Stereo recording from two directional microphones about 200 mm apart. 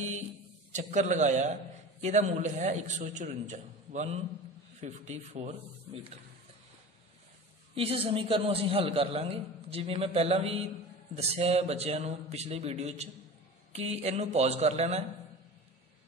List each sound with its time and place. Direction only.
0.7 s a man's voice: 35° right (ahead or behind)
7.7 s a man's voice: 30° right (ahead or behind)